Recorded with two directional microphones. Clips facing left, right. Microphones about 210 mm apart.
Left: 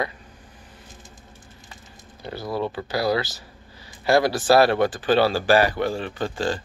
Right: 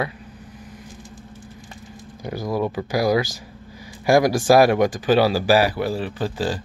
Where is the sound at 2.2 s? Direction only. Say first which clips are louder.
Right 3 dB; 15° right (ahead or behind).